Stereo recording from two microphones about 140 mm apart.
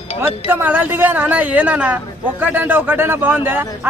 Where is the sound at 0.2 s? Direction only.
15° right (ahead or behind).